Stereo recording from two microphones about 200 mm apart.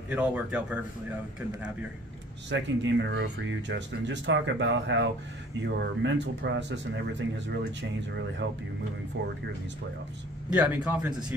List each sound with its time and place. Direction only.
0.1 s speech: 5° right (ahead or behind)
2.5 s speech: 65° right (ahead or behind)
10.5 s speech: 10° right (ahead or behind)